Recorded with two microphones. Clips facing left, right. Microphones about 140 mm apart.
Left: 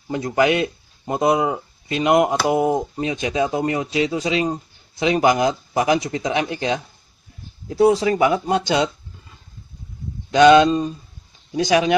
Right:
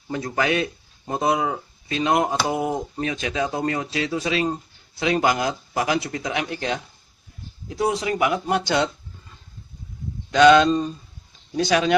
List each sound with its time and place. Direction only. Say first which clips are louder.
0.1 s speech: left 5 dB; 20° left (ahead or behind)
7.6 s speech: left 8 dB; 30° left (ahead or behind)
10.3 s speech: left 2 dB; 20° left (ahead or behind)